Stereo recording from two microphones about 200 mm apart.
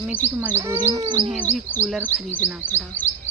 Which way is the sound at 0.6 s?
15° right (ahead or behind).